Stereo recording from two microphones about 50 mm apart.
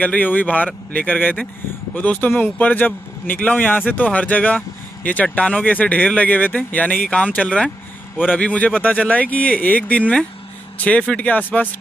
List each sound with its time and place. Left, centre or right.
0.0 s speech: left